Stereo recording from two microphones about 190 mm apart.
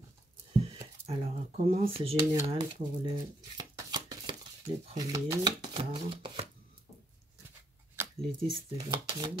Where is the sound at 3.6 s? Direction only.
20° right (ahead or behind).